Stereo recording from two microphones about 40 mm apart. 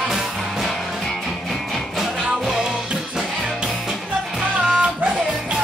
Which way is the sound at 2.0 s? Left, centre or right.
Centre.